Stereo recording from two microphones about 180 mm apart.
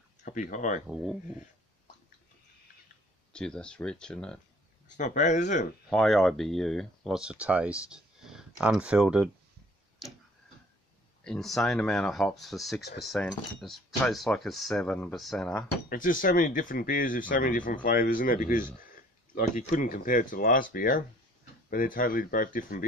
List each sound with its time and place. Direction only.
0.2 s speech: 45° left (ahead or behind)
0.8 s speech: 5° right (ahead or behind)
3.3 s speech: 5° left (ahead or behind)
4.9 s speech: 45° left (ahead or behind)
5.9 s speech: centre (ahead or behind)
11.2 s speech: centre (ahead or behind)
15.9 s speech: 50° left (ahead or behind)